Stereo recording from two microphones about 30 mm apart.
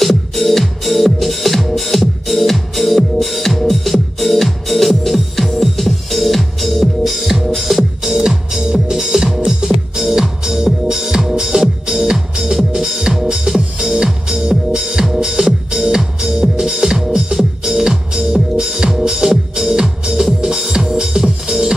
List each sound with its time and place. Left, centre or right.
0.0 s music: centre
8.0 s music: centre